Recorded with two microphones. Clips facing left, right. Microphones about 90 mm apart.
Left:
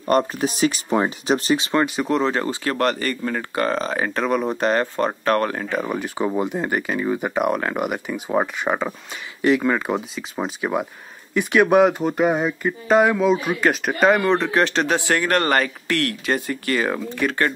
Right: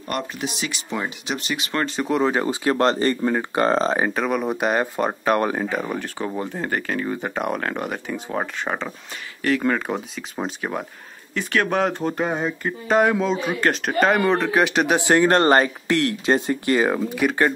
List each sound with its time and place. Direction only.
0.0 s speech: 35° left (ahead or behind)
1.7 s speech: 15° left (ahead or behind)
2.0 s speech: 5° right (ahead or behind); by 4.0 s 30° right (ahead or behind)
4.1 s speech: centre (ahead or behind)
5.7 s speech: 5° left (ahead or behind); by 16.9 s 20° right (ahead or behind)
16.9 s speech: 10° right (ahead or behind)